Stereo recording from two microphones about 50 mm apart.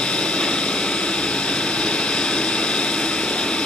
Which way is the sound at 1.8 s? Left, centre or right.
Centre.